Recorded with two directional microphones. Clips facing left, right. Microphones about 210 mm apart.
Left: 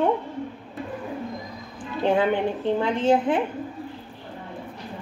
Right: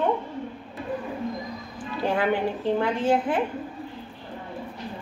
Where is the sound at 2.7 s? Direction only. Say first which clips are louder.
Left 3 dB; 20° left (ahead or behind).